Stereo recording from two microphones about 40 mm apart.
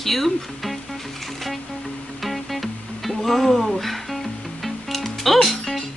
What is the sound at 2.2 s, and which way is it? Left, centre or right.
Music, centre.